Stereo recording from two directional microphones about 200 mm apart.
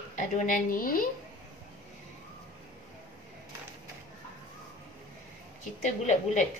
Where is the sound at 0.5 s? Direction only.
45° left (ahead or behind).